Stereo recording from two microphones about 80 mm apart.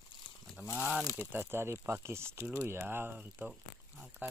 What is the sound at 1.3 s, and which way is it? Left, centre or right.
Speech, right.